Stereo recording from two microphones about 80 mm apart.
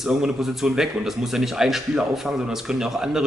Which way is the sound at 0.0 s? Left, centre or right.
Centre.